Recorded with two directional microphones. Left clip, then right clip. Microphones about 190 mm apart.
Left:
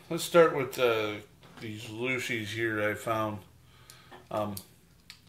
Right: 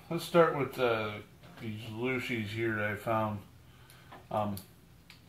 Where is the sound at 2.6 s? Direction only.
15° left (ahead or behind).